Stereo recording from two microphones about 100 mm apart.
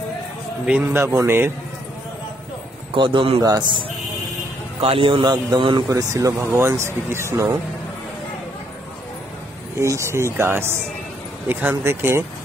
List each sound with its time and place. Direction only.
0.7 s speech: 20° right (ahead or behind)
2.9 s a man's voice: 60° right (ahead or behind)
3.4 s speech: 40° right (ahead or behind)
4.8 s a man's voice: 70° right (ahead or behind); by 5.9 s 50° right (ahead or behind)
5.9 s speech: 30° right (ahead or behind)
9.8 s speech: 30° right (ahead or behind)
11.8 s speech: 25° right (ahead or behind)